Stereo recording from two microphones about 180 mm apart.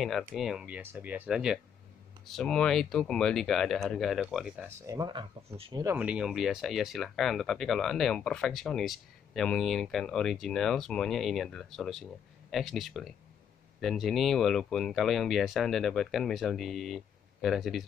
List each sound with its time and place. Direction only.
0.0 s speech: centre (ahead or behind)
4.6 s speech: 15° right (ahead or behind)
5.9 s speech: 5° right (ahead or behind)